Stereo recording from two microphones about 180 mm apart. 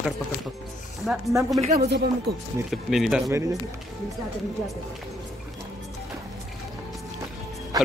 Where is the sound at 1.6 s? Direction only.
35° right (ahead or behind).